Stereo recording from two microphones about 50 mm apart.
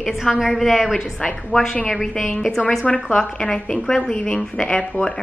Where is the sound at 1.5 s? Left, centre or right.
Centre.